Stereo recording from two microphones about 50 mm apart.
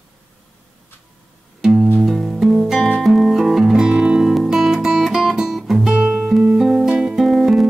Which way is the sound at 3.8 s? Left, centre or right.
Centre.